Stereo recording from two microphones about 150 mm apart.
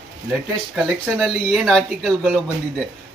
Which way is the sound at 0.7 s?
Centre (ahead or behind).